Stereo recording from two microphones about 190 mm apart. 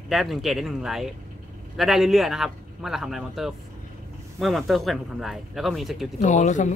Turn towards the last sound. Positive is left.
turn(degrees=40)  # may be behind; listen again after turning